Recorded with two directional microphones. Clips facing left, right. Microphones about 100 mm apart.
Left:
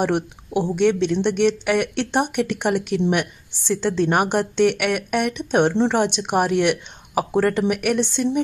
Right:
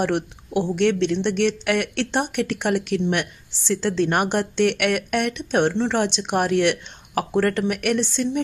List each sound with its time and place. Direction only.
0.0 s speech: 10° left (ahead or behind)
8.0 s speech: 20° left (ahead or behind)